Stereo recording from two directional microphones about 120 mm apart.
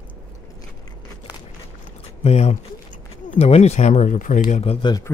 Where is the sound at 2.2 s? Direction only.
60° left (ahead or behind); by 4.4 s 90° left.